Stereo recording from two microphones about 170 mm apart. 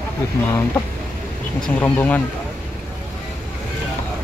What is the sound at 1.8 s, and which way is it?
Speech, 10° left (ahead or behind).